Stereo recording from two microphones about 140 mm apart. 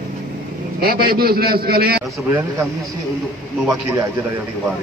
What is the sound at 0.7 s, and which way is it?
A man's voice, 90° right.